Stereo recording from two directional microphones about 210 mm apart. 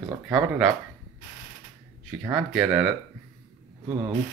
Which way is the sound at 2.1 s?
5° right (ahead or behind).